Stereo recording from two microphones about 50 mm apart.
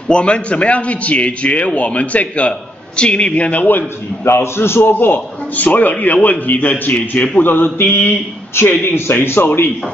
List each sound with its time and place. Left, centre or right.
0.1 s a man's voice: left
4.2 s a man's voice: left
4.9 s a man's voice: left